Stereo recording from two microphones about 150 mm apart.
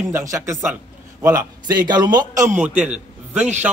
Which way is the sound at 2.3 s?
60° right (ahead or behind).